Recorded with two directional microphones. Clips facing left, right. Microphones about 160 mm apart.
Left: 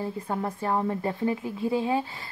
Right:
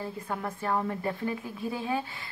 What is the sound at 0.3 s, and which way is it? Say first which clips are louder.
A woman's voice: left 2 dB; 30° left (ahead or behind).